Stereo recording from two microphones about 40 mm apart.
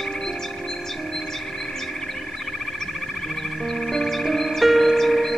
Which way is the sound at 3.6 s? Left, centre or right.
Centre.